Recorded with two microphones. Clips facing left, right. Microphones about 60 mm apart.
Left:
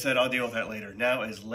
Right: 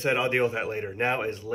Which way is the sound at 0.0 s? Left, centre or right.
Right.